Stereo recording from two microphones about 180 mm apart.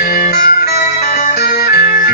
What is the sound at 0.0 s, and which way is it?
Music, 55° left (ahead or behind).